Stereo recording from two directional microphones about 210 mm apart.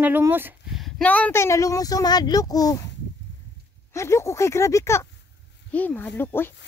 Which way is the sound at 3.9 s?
15° left (ahead or behind).